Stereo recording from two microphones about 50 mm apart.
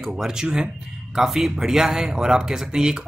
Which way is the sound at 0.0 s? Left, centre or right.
Centre.